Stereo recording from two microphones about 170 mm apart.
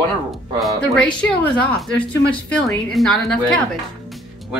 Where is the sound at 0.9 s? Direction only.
5° left (ahead or behind).